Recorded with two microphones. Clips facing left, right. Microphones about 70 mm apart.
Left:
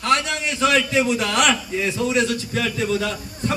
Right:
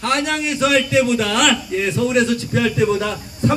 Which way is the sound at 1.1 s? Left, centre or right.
Centre.